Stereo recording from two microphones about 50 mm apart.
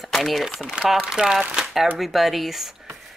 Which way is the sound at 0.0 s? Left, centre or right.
Centre.